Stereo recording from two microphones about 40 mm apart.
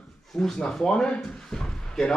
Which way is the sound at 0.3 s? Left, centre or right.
Centre.